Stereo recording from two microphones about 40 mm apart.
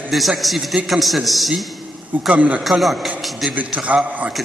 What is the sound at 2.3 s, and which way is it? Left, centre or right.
Speech, right.